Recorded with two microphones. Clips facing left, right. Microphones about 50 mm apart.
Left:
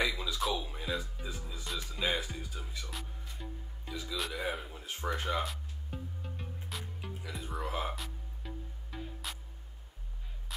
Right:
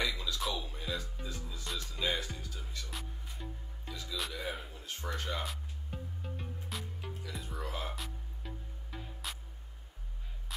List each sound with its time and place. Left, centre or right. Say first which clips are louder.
0.0 s music: left 2 dB; centre
0.4 s music: left 5 dB; centre
0.7 s music: left 3 dB; centre
2.9 s music: even; centre
3.9 s music: left 3 dB; centre
4.5 s a sound: left 3 dB; centre
4.7 s speech: left 4 dB; centre
5.4 s music: left 3 dB; centre